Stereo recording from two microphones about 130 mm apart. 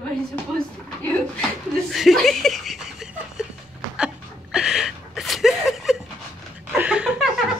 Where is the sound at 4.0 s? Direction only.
5° right (ahead or behind).